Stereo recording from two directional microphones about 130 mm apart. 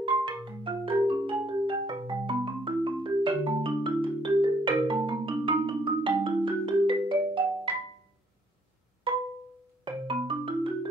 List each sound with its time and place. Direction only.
0.2 s marimba: 40° right (ahead or behind)
9.8 s marimba: 40° right (ahead or behind)